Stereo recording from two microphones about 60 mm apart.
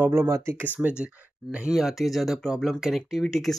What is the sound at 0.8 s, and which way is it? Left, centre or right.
Speech, centre.